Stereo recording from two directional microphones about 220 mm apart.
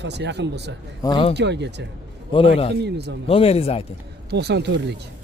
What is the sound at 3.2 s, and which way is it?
Speech, 25° left (ahead or behind).